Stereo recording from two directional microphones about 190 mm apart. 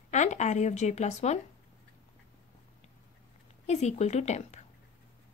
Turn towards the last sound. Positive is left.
turn(degrees=35)  # may be behind; listen again after turning